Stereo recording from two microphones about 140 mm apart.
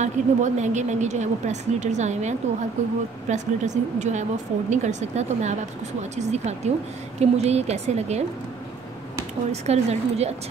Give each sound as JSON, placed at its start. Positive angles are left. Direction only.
{"t": 0.0, "sound": "a woman's voice", "side_deg": -60}
{"t": 9.5, "sound": "speech", "side_deg": -50}